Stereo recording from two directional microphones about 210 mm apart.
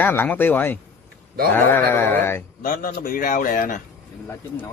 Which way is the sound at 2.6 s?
45° left (ahead or behind).